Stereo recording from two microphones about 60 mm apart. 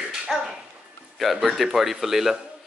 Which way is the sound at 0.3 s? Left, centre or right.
Centre.